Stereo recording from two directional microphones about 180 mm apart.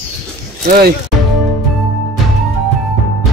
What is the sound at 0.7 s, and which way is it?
Speech, 55° right (ahead or behind).